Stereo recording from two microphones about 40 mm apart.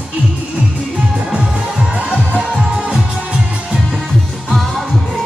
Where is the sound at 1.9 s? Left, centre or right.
Right.